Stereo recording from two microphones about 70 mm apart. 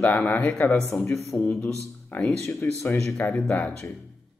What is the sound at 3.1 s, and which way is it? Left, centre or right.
Speech, left.